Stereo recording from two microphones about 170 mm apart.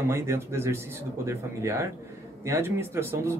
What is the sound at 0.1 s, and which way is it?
Speech, 15° right (ahead or behind).